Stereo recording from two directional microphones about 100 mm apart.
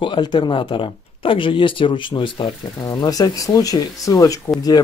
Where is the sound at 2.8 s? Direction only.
40° left (ahead or behind).